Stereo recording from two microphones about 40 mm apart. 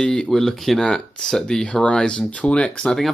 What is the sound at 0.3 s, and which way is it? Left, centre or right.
Speech, centre.